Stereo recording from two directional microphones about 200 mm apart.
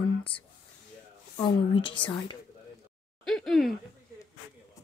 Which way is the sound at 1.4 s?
25° left (ahead or behind).